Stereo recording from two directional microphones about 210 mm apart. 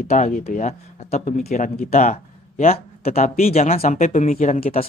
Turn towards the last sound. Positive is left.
turn(degrees=30)  # may be behind; listen again after turning